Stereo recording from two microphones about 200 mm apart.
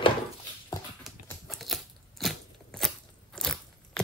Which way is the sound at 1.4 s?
Centre (ahead or behind).